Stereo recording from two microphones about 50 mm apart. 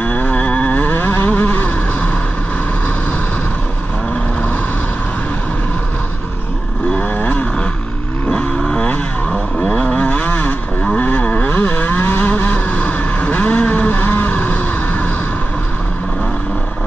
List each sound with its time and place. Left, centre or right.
0.0 s vehicle: left
7.0 s vehicle: left
8.3 s vehicle: centre; by 11.2 s left
11.2 s vehicle: left